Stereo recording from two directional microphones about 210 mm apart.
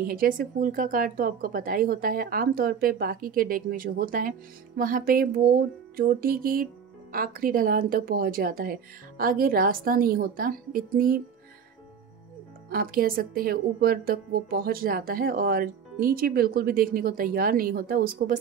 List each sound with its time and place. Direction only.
0.0 s speech: 45° right (ahead or behind)
12.6 s speech: 45° right (ahead or behind)